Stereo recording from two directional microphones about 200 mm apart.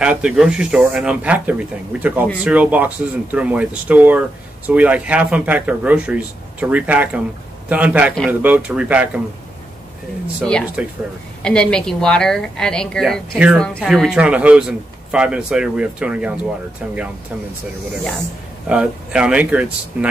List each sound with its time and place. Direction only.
0.0 s a man's voice: 5° right (ahead or behind)
10.8 s a man's voice: 5° right (ahead or behind)
18.7 s speech: 5° right (ahead or behind)